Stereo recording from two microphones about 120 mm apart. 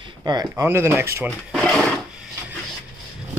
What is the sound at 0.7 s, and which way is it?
Speech, 20° right (ahead or behind).